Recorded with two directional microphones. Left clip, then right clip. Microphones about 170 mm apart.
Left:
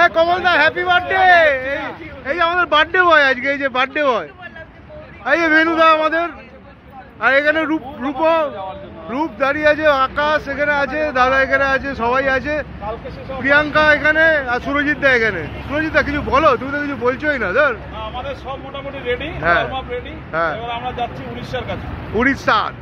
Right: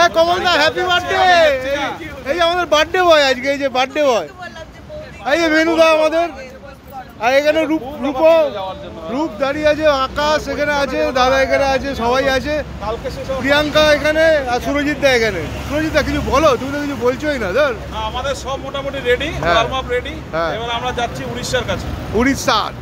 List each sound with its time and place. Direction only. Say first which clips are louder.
0.0 s a sound: right 1 dB; 5° right (ahead or behind)
2.2 s speech: right 1 dB; 5° right (ahead or behind)
17.9 s speech: right 5 dB; 15° right (ahead or behind)